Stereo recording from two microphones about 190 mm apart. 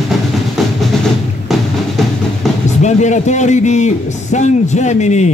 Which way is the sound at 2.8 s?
40° left (ahead or behind).